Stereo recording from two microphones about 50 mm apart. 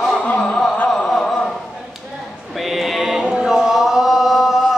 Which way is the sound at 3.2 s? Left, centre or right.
Centre.